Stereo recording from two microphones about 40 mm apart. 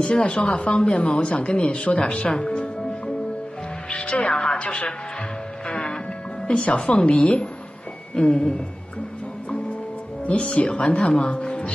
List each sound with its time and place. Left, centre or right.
0.0 s speech: left
2.5 s music: left
4.2 s speech: left
5.7 s music: left
6.6 s speech: left
10.3 s speech: left
11.2 s music: left